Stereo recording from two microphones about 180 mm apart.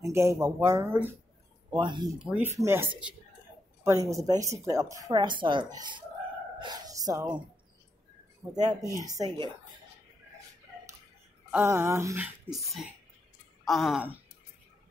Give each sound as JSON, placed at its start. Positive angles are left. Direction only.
{"t": 0.0, "sound": "speech", "side_deg": -15}
{"t": 1.7, "sound": "speech", "side_deg": -25}
{"t": 2.1, "sound": "speech", "side_deg": -5}
{"t": 8.5, "sound": "speech", "side_deg": -20}
{"t": 11.5, "sound": "speech", "side_deg": -10}
{"t": 12.4, "sound": "speech", "side_deg": 0}